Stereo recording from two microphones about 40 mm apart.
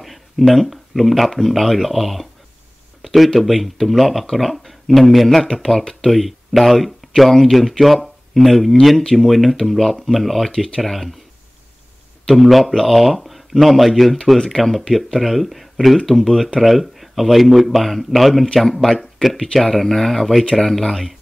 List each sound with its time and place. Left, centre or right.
0.0 s speech: centre
3.0 s a sound: centre
3.3 s speech: centre
10.5 s speech: centre
10.8 s speech: centre
12.3 s speech: centre